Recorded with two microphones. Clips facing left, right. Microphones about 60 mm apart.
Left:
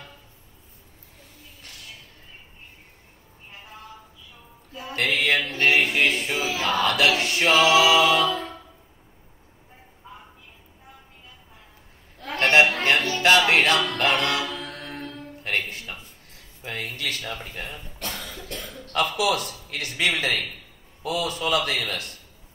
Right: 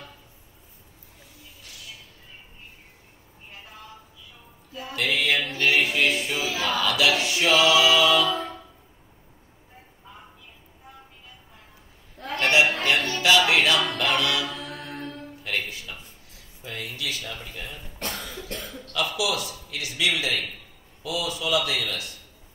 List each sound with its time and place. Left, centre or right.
4.8 s a capella: left
12.3 s a sound: left
13.2 s music: left
13.9 s a capella: left
16.6 s a sound: left
17.9 s cough: right
18.9 s a man's voice: left
21.0 s a capella: left